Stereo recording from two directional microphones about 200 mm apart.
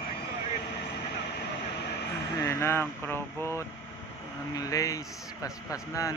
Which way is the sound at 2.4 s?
15° left (ahead or behind).